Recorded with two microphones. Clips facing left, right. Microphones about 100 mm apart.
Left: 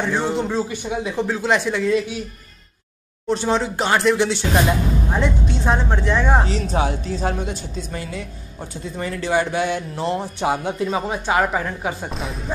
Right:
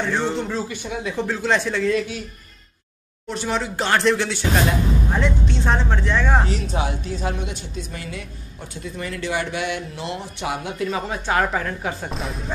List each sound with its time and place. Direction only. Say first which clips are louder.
0.0 s speech: left 2 dB; 15° left (ahead or behind)
3.3 s speech: left 5 dB; 25° left (ahead or behind)
5.7 s speech: left 2 dB; 15° left (ahead or behind)
6.5 s speech: left 3 dB; 35° left (ahead or behind)
11.1 s speech: left 1 dB; 10° left (ahead or behind)